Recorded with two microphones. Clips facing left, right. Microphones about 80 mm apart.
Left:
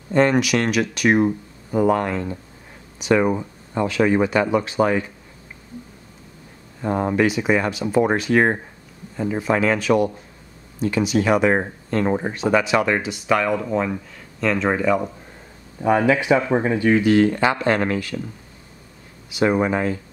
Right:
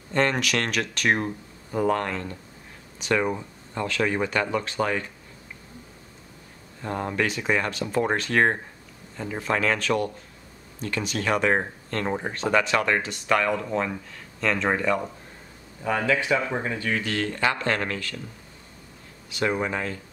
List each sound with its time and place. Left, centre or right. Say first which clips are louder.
0.1 s speech: left 7 dB; centre
6.8 s speech: left 7 dB; centre
15.8 s speech: left 7 dB; left
19.3 s speech: left 7 dB; centre